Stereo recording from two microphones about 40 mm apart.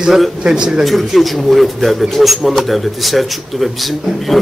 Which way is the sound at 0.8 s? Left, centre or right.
Centre.